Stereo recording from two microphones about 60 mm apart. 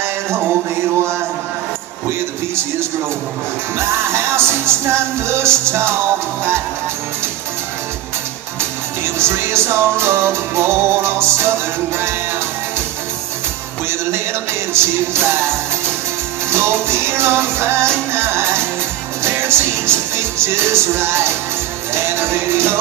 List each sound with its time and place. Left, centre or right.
3.7 s music: right
8.5 s music: right
14.7 s music: right
16.4 s music: right